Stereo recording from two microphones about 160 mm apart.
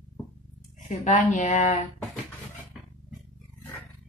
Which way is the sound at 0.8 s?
45° left (ahead or behind).